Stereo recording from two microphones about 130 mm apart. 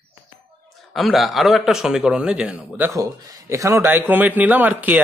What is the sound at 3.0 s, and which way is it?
Speech, 25° right (ahead or behind).